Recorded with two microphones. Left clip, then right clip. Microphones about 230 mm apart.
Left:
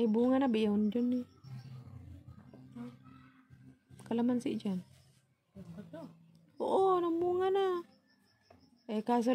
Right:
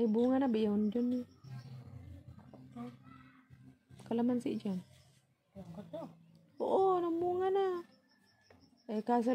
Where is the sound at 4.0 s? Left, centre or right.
Centre.